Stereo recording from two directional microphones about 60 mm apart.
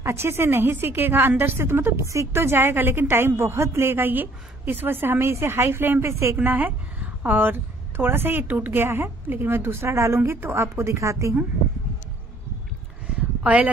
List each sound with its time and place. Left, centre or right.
0.0 s a woman's voice: right
3.8 s a woman's voice: right
5.3 s a woman's voice: right
6.3 s a woman's voice: right
13.4 s speech: right